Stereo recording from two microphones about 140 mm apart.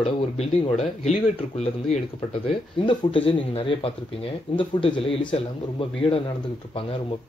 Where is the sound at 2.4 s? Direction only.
40° left (ahead or behind).